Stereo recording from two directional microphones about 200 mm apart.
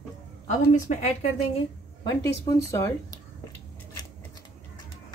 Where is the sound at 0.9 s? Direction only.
40° left (ahead or behind).